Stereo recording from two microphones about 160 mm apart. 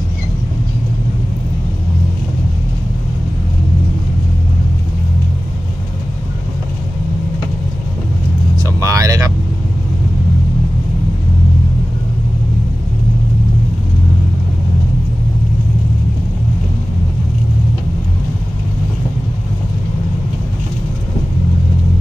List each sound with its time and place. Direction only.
8.5 s vehicle: 20° right (ahead or behind)